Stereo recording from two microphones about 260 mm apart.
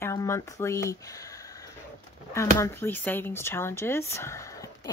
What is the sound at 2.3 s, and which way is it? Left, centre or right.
Speech, centre.